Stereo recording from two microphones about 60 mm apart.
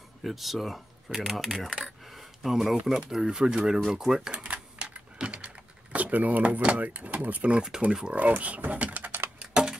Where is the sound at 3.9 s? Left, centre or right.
Centre.